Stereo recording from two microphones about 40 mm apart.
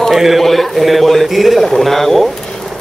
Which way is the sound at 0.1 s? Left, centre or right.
Centre.